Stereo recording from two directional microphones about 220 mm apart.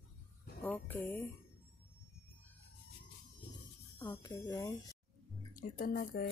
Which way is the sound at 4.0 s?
15° left (ahead or behind).